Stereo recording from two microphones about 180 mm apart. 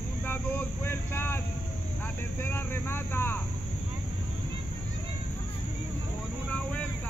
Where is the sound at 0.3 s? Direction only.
10° left (ahead or behind).